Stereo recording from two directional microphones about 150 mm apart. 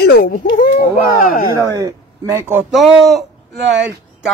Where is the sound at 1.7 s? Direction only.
25° right (ahead or behind).